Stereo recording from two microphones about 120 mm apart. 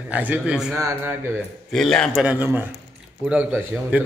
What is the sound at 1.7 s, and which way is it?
Speech, 5° left (ahead or behind).